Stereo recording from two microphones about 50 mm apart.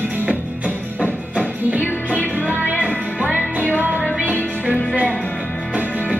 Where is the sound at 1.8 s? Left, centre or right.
Left.